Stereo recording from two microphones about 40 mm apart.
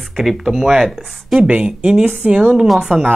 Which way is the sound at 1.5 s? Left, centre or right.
Right.